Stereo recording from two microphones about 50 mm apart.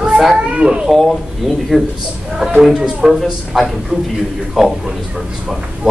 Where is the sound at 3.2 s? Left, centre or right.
Centre.